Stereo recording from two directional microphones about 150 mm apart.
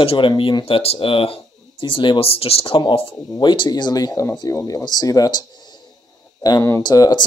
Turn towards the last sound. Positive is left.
turn(degrees=25)  # may be behind; listen again after turning